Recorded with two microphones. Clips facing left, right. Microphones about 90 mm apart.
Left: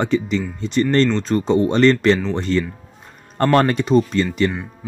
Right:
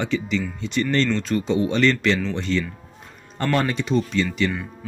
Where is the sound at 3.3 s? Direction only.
55° left (ahead or behind).